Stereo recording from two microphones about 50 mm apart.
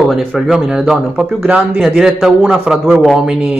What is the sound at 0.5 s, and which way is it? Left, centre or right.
Speech, centre.